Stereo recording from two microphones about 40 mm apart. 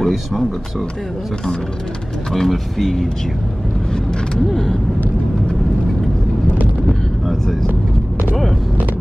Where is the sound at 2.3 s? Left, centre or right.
Centre.